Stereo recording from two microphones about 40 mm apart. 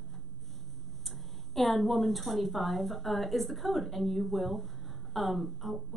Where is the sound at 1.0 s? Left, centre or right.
Centre.